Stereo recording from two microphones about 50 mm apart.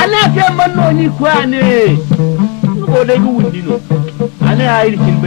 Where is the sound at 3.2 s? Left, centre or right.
Centre.